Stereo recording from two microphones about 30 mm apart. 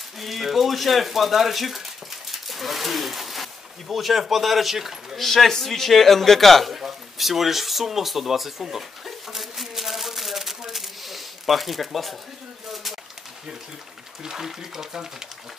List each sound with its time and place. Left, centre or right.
0.2 s speech: centre
2.3 s a sound: centre
3.9 s speech: centre
5.1 s a man's voice: centre
6.7 s speech: centre
8.7 s a sound: centre
14.2 s speech: centre